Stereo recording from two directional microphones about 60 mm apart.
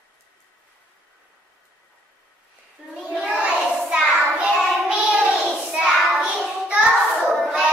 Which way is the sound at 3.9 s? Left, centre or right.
Centre.